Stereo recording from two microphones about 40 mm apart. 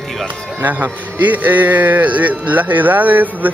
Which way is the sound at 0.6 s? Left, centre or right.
Right.